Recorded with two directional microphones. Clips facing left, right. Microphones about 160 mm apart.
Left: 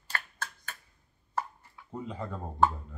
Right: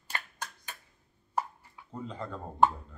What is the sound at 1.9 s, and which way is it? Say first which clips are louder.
Speech: left 1 dB; 10° left (ahead or behind).